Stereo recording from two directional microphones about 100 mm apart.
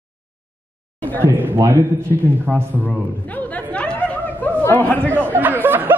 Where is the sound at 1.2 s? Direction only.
20° right (ahead or behind).